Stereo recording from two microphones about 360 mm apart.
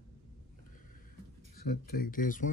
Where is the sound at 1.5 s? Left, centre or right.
Left.